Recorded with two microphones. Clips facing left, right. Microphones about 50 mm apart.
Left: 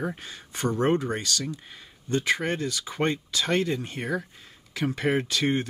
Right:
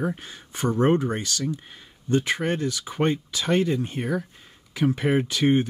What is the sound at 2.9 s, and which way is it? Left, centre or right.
Speech, centre.